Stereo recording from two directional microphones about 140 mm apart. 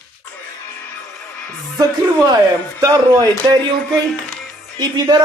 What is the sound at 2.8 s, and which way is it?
Speech, 30° right (ahead or behind).